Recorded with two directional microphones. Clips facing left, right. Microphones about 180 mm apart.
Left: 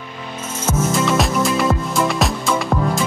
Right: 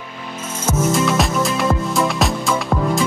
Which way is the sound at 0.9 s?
Centre (ahead or behind).